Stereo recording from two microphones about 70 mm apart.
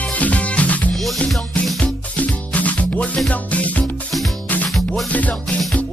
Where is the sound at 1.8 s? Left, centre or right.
Left.